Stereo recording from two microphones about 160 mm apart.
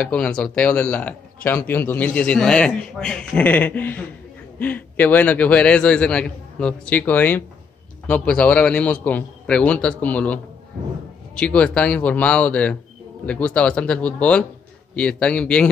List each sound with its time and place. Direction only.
0.0 s speech: 5° left (ahead or behind)